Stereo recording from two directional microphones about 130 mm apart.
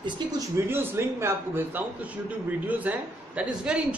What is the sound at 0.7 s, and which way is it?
A man's voice, 20° right (ahead or behind).